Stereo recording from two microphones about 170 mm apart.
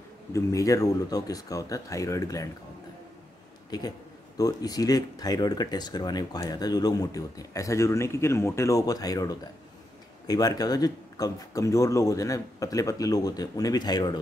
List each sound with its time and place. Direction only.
0.3 s speech: 20° left (ahead or behind)
4.4 s speech: 20° left (ahead or behind)